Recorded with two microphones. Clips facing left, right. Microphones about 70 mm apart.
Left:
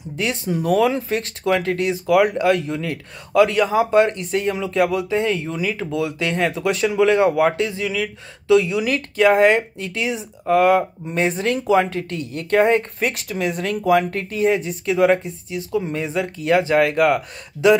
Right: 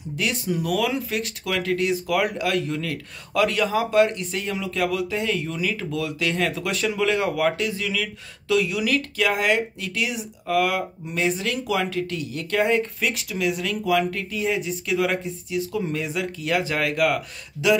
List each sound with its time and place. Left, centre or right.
0.2 s speech: left
4.3 s speech: left
4.6 s speech: left